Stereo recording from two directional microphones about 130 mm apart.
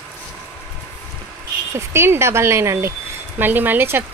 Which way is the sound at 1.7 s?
20° right (ahead or behind).